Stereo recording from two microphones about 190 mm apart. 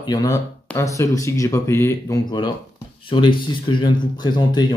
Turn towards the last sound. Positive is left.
turn(degrees=20)  # may be behind; listen again after turning